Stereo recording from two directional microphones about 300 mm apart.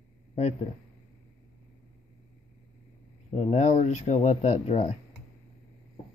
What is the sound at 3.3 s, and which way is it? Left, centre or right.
Speech, left.